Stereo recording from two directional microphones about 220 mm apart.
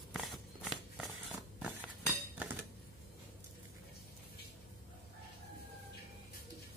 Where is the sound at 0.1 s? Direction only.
Centre (ahead or behind).